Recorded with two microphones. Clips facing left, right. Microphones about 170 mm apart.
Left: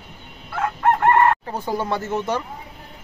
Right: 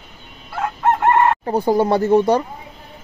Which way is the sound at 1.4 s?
35° right (ahead or behind).